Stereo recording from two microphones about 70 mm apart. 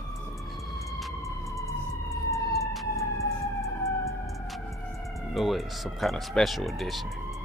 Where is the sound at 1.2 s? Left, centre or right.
Left.